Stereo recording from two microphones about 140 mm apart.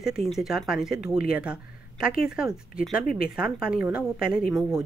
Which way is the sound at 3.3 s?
5° right (ahead or behind).